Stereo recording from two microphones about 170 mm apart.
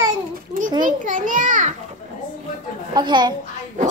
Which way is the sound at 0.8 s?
50° right (ahead or behind).